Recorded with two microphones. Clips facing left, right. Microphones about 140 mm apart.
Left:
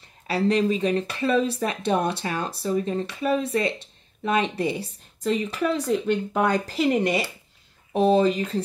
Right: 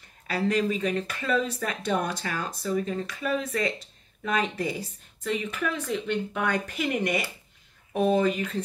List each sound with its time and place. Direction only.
0.3 s a woman's voice: 30° left (ahead or behind)